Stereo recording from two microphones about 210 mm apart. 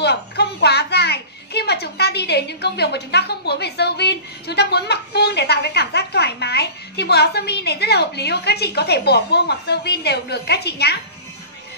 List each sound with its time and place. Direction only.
0.0 s a child's voice: 50° left (ahead or behind)